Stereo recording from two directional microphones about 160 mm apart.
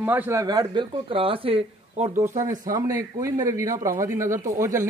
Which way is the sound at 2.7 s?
20° right (ahead or behind).